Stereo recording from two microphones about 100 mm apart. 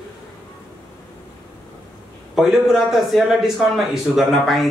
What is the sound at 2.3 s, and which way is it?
Speech, 5° right (ahead or behind).